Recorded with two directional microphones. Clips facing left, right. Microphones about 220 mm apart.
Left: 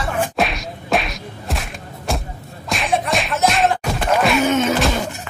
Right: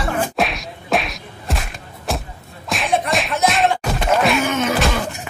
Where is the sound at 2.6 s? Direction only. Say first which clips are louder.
Even; centre (ahead or behind).